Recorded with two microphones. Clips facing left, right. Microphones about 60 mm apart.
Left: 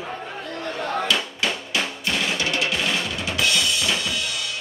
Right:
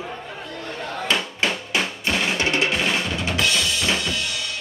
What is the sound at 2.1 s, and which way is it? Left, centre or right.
Percussion, right.